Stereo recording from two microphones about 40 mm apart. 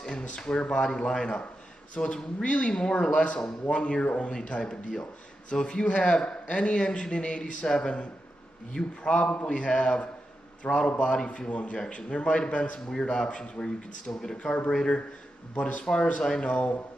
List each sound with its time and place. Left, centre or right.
0.1 s a man's voice: left
2.7 s a man's voice: left
4.5 s a man's voice: left
9.1 s a man's voice: left
15.5 s speech: left
15.8 s a man's voice: left